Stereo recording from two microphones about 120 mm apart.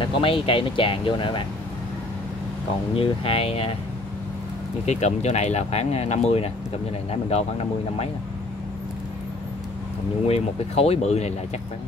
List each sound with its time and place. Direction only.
0.0 s speech: 45° left (ahead or behind)
3.0 s speech: 55° left (ahead or behind)
4.8 s speech: 65° left (ahead or behind)
10.2 s speech: 60° left (ahead or behind)